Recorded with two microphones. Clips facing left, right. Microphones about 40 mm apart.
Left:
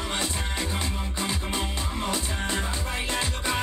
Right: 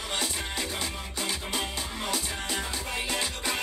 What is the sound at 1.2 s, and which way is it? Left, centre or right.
Music, left.